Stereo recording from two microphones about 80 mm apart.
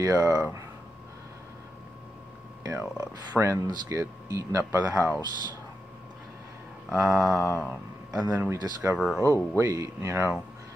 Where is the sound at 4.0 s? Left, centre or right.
Right.